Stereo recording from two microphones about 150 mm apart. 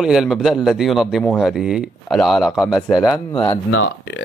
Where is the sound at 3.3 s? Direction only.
35° left (ahead or behind).